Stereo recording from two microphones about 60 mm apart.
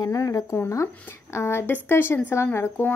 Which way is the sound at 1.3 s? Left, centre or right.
Left.